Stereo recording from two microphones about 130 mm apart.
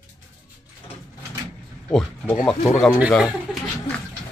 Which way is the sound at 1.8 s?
10° left (ahead or behind).